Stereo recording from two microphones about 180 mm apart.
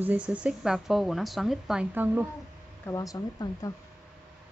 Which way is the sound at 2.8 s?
20° left (ahead or behind).